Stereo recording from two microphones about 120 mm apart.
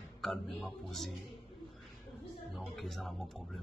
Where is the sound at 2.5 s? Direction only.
Centre (ahead or behind).